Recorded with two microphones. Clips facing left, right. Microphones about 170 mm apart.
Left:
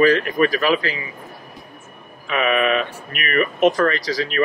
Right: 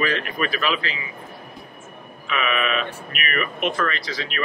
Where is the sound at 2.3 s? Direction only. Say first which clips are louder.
Left 5 dB; 40° left (ahead or behind).